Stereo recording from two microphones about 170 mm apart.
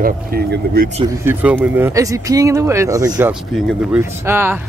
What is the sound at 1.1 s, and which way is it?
Speech, 15° right (ahead or behind).